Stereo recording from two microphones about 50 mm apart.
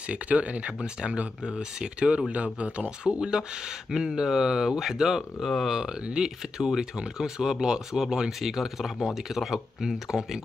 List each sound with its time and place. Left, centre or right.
0.1 s speech: right
3.1 s speech: centre